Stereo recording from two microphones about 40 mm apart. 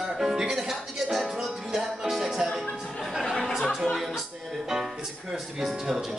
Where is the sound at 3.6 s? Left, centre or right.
Centre.